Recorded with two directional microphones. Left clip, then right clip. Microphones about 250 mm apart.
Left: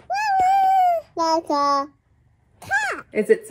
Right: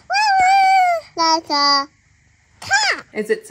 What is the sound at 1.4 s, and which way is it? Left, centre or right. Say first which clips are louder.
Child singing: right 3 dB; right.